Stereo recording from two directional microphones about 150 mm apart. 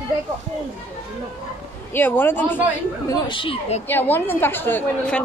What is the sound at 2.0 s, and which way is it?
Speech, 15° left (ahead or behind).